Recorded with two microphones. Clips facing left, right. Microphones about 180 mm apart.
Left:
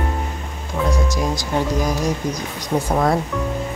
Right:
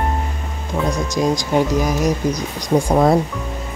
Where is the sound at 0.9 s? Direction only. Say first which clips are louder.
Right 3 dB; 20° right (ahead or behind).